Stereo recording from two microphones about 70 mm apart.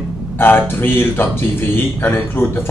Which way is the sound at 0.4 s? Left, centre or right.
Left.